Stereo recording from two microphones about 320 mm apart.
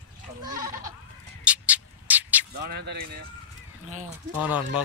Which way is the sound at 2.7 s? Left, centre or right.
Right.